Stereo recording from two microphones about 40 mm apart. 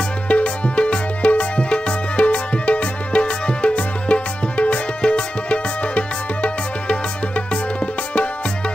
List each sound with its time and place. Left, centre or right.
0.3 s music: left